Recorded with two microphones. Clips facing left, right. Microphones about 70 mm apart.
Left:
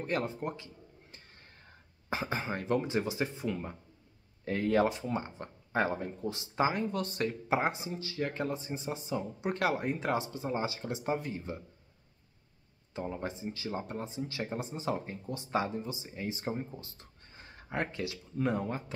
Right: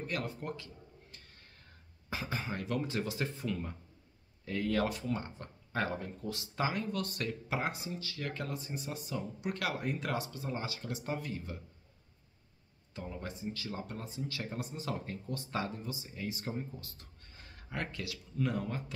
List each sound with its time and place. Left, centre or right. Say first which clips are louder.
0.0 s speech: left 5 dB; left
1.1 s a sound: left 2 dB; left
2.0 s speech: left 4 dB; left
4.5 s speech: left 5 dB; left
12.9 s speech: left 6 dB; left